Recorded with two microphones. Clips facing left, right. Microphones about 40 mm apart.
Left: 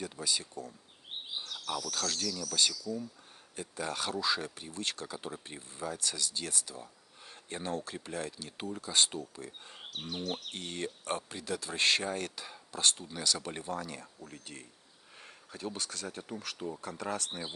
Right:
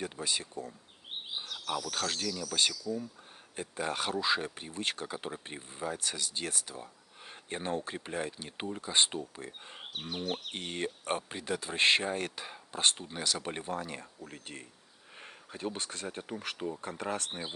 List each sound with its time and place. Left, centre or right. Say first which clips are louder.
0.0 s speech: right 1 dB; right
1.3 s speech: right 2 dB; centre